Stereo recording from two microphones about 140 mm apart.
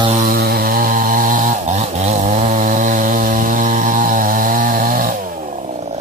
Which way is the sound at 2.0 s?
55° right (ahead or behind).